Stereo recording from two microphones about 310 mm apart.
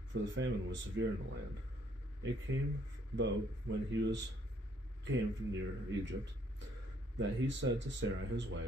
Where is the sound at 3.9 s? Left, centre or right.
Right.